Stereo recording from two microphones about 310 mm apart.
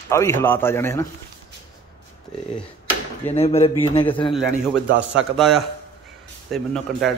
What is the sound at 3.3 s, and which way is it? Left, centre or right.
A man's voice, centre.